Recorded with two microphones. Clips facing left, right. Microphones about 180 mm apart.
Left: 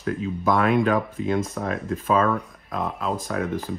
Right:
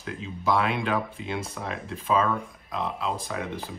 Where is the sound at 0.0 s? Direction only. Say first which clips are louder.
Left 6 dB; 50° left (ahead or behind).